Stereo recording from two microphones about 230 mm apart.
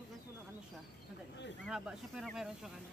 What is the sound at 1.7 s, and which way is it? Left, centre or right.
Speech, centre.